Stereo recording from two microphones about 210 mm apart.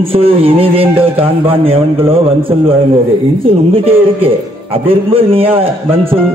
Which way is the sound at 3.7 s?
25° right (ahead or behind).